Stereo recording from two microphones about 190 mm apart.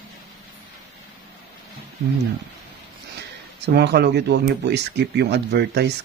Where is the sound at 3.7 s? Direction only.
60° right (ahead or behind).